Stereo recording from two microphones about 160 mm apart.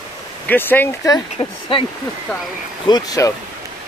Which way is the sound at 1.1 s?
30° left (ahead or behind).